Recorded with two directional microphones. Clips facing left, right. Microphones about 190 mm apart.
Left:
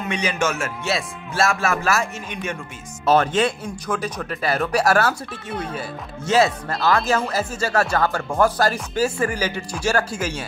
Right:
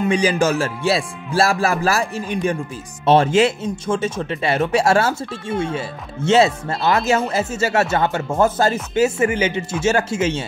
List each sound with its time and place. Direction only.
0.1 s speech: 35° right (ahead or behind)